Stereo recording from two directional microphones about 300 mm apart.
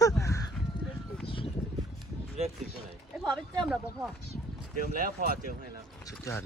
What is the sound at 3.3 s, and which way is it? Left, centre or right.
Speech, centre.